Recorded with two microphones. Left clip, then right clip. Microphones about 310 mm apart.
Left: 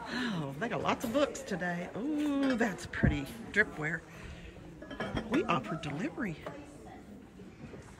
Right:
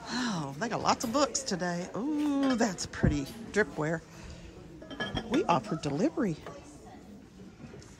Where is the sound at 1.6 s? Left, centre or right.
Right.